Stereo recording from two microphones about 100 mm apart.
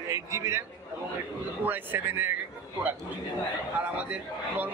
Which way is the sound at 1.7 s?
20° right (ahead or behind).